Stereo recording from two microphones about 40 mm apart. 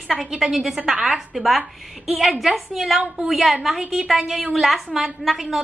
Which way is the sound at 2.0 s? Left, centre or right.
Centre.